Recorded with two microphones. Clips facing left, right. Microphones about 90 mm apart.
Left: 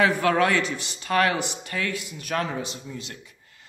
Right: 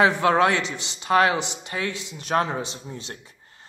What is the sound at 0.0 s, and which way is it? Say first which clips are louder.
A man's voice: right 2 dB; 25° right (ahead or behind).